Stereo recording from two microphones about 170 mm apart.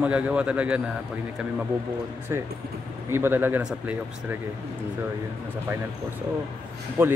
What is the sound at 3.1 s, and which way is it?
Speech, 15° right (ahead or behind).